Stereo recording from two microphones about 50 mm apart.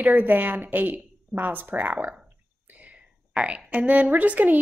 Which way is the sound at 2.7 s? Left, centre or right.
Right.